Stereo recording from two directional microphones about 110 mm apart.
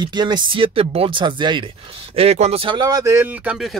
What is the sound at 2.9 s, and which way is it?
Speech, 30° right (ahead or behind).